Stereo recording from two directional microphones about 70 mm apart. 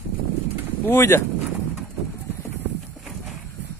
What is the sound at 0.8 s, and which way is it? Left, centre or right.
Speech, left.